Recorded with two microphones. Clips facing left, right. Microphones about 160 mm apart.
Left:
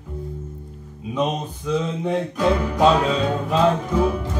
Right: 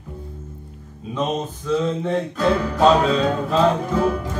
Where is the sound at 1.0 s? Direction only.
10° left (ahead or behind).